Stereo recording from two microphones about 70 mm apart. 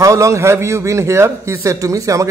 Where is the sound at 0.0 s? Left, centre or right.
Right.